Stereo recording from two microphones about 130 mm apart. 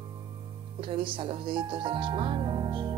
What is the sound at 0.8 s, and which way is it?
Speech, 40° right (ahead or behind).